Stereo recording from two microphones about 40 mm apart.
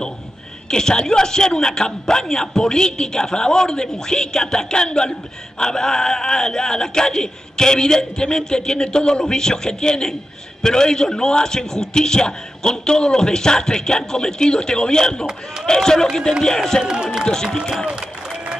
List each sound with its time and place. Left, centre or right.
0.7 s a man's voice: centre
16.8 s speech: centre
17.2 s a man's voice: centre